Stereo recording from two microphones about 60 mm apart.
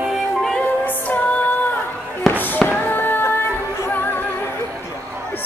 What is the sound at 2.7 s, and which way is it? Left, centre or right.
Music, left.